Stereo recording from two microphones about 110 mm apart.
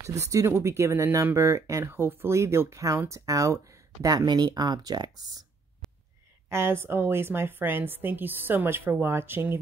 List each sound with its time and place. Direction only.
0.0 s speech: 30° right (ahead or behind)
6.5 s speech: 20° right (ahead or behind)